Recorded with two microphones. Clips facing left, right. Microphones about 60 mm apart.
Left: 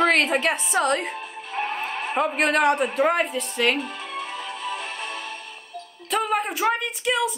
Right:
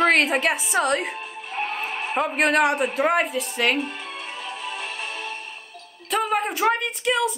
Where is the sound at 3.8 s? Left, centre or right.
Right.